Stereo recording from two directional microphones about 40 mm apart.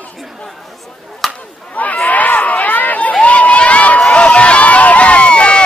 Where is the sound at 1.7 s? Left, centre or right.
Left.